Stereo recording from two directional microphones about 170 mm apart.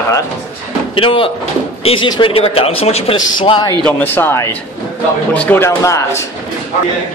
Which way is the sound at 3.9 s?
10° left (ahead or behind).